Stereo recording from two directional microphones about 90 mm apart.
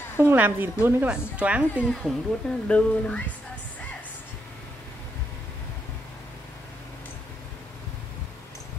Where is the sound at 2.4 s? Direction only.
5° left (ahead or behind).